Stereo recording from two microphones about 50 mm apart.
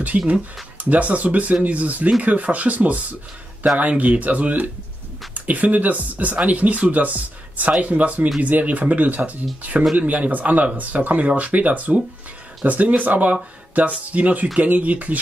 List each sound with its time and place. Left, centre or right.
0.1 s speech: right